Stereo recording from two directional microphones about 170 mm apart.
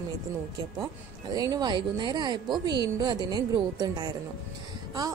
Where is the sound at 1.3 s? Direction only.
20° right (ahead or behind).